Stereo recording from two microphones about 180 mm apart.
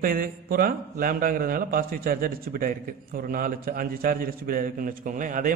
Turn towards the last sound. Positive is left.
turn(degrees=-50)  # may be behind; listen again after turning